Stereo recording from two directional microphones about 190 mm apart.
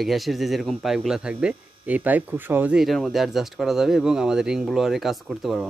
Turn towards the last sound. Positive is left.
turn(degrees=0)  # may be behind; listen again after turning